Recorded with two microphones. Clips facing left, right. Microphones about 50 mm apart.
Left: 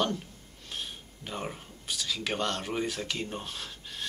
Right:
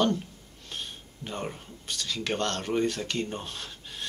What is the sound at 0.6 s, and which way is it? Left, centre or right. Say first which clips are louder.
Speech: even; centre.